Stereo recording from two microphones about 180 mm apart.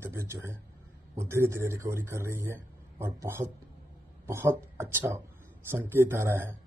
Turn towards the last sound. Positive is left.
turn(degrees=-15)  # may be behind; listen again after turning